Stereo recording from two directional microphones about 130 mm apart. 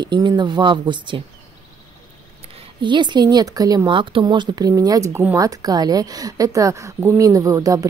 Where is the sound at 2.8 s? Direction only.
35° right (ahead or behind).